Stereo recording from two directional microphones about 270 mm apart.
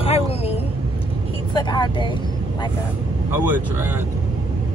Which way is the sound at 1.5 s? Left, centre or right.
Centre.